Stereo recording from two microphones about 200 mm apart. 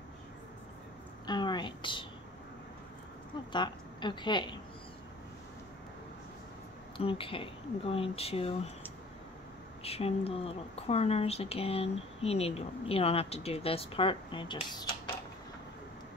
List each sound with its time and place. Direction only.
1.2 s a sound: 20° left (ahead or behind)
3.5 s speech: 25° left (ahead or behind)
7.0 s speech: 25° left (ahead or behind)
9.8 s speech: 30° left (ahead or behind)